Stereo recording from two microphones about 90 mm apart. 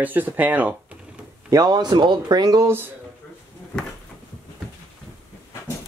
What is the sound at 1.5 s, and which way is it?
Speech, 50° right (ahead or behind).